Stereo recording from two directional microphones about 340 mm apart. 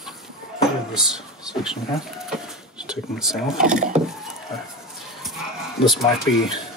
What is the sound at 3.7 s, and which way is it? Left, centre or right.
Wood, right.